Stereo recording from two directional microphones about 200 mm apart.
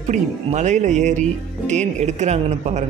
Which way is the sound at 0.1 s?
35° right (ahead or behind).